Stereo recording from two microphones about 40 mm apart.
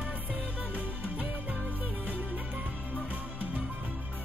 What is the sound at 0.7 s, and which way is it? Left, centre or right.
Music, left.